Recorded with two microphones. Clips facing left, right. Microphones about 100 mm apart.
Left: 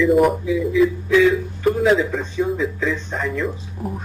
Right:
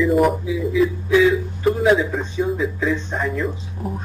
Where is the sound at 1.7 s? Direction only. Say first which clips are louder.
Even; 5° right (ahead or behind).